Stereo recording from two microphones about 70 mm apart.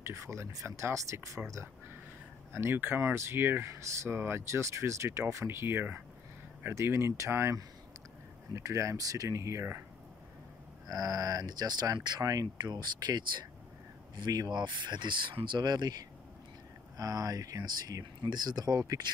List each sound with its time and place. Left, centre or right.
0.0 s speech: right
2.5 s speech: right
8.5 s speech: right
10.9 s speech: right
14.1 s speech: right
16.9 s speech: right